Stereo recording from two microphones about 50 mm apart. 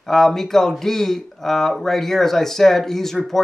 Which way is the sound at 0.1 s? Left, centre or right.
Centre.